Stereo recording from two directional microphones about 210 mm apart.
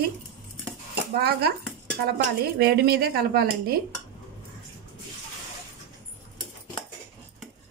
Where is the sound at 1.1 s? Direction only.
50° right (ahead or behind).